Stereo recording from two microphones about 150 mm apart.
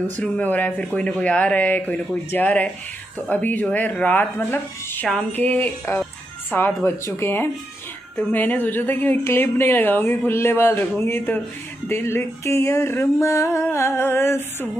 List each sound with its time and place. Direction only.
0.2 s a woman's voice: 10° left (ahead or behind)